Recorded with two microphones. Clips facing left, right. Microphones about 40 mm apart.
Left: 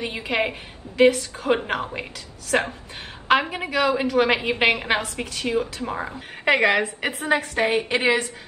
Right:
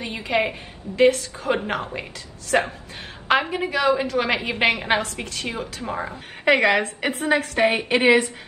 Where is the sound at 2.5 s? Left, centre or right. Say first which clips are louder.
Right 1 dB; centre.